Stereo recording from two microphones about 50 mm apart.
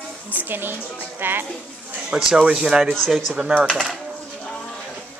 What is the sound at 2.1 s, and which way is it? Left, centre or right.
Speech, centre.